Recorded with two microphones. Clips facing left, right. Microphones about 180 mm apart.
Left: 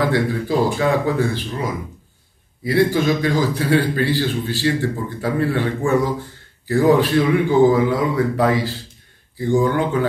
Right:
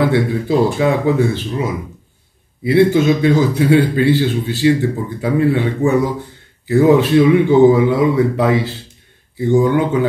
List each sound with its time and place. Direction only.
0.0 s a man's voice: 20° right (ahead or behind)